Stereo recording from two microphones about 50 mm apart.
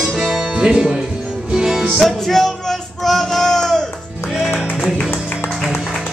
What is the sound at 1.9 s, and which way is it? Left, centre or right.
Music, centre.